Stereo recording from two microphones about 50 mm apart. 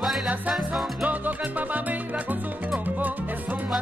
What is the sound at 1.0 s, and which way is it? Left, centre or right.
Music, right.